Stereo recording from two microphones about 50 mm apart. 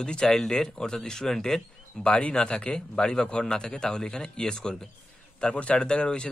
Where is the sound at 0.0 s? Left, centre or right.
Centre.